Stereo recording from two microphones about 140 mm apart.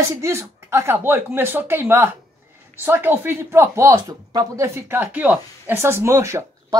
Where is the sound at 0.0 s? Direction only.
20° right (ahead or behind).